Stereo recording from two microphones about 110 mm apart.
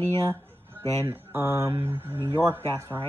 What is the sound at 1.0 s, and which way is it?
Speech, 25° right (ahead or behind).